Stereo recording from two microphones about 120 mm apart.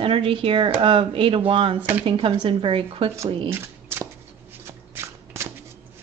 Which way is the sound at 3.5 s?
20° right (ahead or behind).